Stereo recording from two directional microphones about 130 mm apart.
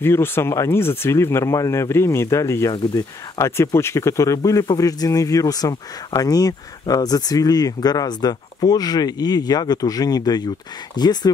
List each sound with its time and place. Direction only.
0.0 s speech: 15° left (ahead or behind)